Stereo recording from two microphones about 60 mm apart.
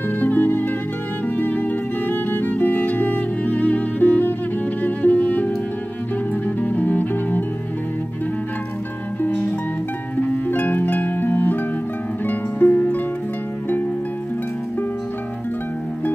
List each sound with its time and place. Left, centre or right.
0.2 s music: left
10.1 s music: left